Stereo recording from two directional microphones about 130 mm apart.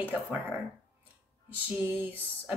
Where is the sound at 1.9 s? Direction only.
15° right (ahead or behind).